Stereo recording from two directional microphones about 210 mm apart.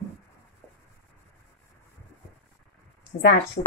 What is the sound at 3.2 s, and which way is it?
Speech, 50° left (ahead or behind).